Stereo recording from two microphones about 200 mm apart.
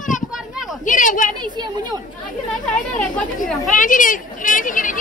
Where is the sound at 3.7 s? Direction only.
40° left (ahead or behind).